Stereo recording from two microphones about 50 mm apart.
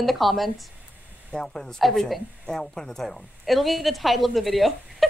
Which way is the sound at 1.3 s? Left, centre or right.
Centre.